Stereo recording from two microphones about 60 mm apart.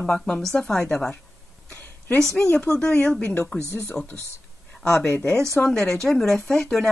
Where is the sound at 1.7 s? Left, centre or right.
Left.